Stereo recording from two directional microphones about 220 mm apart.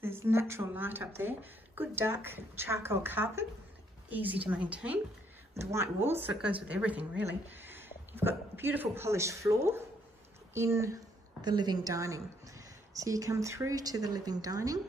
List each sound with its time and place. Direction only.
0.0 s a woman's voice: 10° right (ahead or behind)